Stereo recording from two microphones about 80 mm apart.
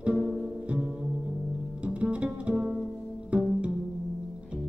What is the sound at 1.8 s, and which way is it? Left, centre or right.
Music, centre.